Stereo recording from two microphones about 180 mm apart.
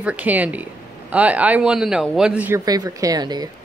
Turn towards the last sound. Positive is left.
turn(degrees=-20)  # may be behind; listen again after turning